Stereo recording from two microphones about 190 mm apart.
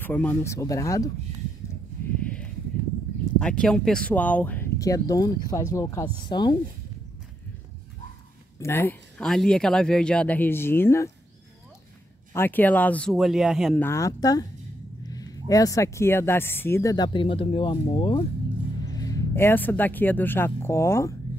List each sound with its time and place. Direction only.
0.0 s speech: 10° left (ahead or behind)
2.2 s a sound: 5° left (ahead or behind)
3.3 s speech: 5° left (ahead or behind); by 6.5 s 25° left (ahead or behind)
8.5 s speech: 15° left (ahead or behind)
12.3 s speech: 10° left (ahead or behind)
13.7 s speech: 15° left (ahead or behind)